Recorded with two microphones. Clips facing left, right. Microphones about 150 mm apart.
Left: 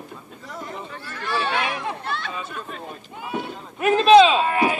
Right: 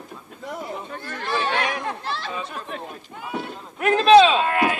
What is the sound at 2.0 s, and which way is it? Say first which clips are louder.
Chatter: even; 30° right (ahead or behind).